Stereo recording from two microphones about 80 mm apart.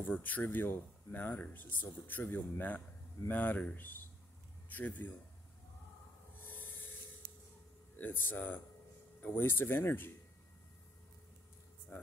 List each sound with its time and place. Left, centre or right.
0.0 s speech: left
6.4 s filing: left
8.0 s speech: left
11.9 s speech: left